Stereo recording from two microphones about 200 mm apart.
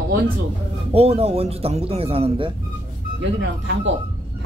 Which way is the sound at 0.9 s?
30° right (ahead or behind).